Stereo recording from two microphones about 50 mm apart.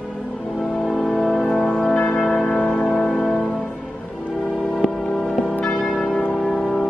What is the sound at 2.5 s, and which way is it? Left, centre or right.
Music, left.